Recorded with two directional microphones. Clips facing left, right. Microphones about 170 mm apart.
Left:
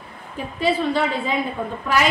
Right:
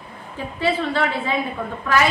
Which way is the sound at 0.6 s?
15° left (ahead or behind).